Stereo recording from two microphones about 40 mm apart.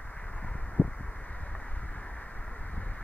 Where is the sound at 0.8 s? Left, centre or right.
Left.